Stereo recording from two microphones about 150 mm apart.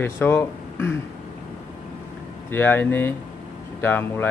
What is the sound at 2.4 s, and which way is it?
Speech, 15° left (ahead or behind).